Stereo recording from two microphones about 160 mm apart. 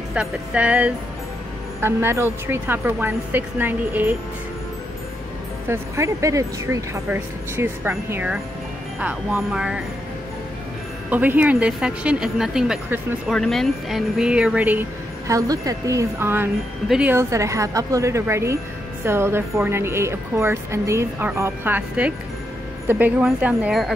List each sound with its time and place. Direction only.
0.1 s speech: 5° right (ahead or behind)
5.7 s speech: 20° right (ahead or behind)
11.1 s speech: 10° right (ahead or behind)